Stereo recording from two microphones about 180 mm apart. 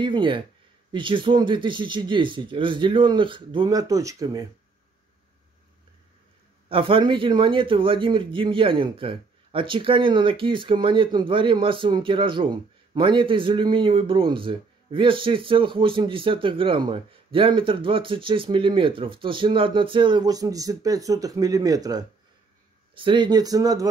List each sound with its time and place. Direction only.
0.0 s a man's voice: 25° right (ahead or behind)
6.7 s a man's voice: 30° right (ahead or behind)